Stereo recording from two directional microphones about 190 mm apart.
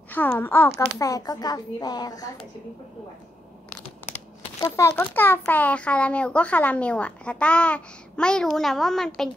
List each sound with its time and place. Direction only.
0.1 s a child's voice: 10° left (ahead or behind)
4.6 s a child's voice: 15° left (ahead or behind)